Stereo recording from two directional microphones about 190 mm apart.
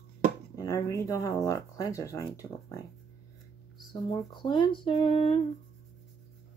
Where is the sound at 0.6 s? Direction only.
15° left (ahead or behind).